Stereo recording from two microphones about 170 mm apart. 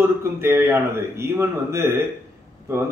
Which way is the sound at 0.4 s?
15° right (ahead or behind).